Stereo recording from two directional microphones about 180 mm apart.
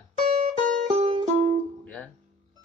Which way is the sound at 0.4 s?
40° right (ahead or behind).